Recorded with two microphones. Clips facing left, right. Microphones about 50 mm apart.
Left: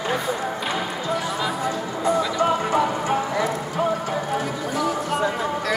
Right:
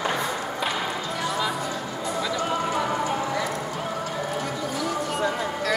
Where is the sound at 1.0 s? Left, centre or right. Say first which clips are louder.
Left 4 dB; centre.